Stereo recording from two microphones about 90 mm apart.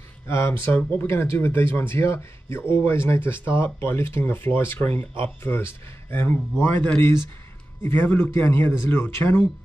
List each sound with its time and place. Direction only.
0.3 s a man's voice: 30° left (ahead or behind)